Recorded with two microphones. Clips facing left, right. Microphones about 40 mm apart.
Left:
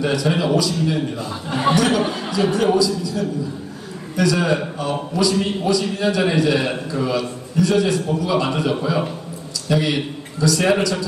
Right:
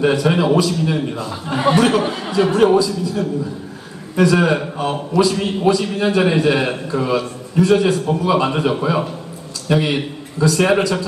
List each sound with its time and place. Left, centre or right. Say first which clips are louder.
0.0 s a man's voice: right 4 dB; right
1.5 s speech: right 2 dB; centre
1.8 s a man's voice: right 3 dB; right